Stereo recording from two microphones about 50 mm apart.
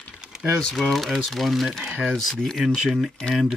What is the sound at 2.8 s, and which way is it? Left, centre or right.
Speech, centre.